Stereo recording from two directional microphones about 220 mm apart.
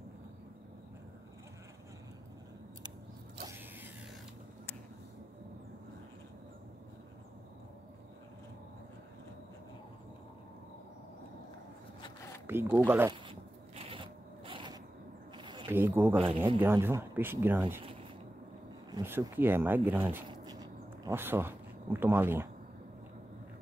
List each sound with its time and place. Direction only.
3.4 s creak: 10° right (ahead or behind)
12.4 s speech: 10° right (ahead or behind)
13.1 s a sound: 25° right (ahead or behind)
15.7 s speech: 10° right (ahead or behind)
16.2 s speech: 20° right (ahead or behind)
16.5 s speech: 10° right (ahead or behind)
18.9 s speech: 10° right (ahead or behind)